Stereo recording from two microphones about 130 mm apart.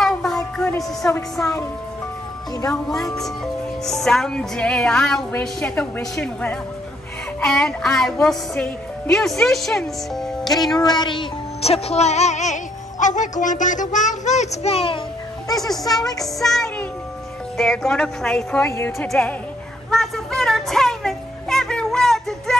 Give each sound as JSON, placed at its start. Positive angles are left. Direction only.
{"t": 0.0, "sound": "a sound", "side_deg": 5}
{"t": 0.7, "sound": "music", "side_deg": 20}
{"t": 2.7, "sound": "speech", "side_deg": 5}
{"t": 10.8, "sound": "music", "side_deg": 35}
{"t": 13.0, "sound": "music", "side_deg": 75}
{"t": 15.4, "sound": "a woman's voice", "side_deg": 30}
{"t": 16.2, "sound": "a woman's voice", "side_deg": 0}
{"t": 18.7, "sound": "a woman's voice", "side_deg": 20}
{"t": 18.9, "sound": "a woman's voice", "side_deg": 10}
{"t": 19.9, "sound": "music", "side_deg": 5}